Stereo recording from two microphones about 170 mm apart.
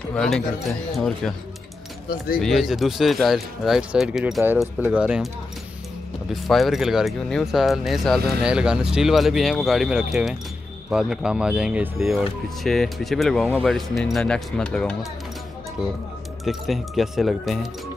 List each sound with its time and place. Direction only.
0.1 s speech: 5° left (ahead or behind)
2.0 s speech: 60° left (ahead or behind)
2.4 s speech: centre (ahead or behind)
6.3 s speech: centre (ahead or behind)
16.4 s speech: centre (ahead or behind)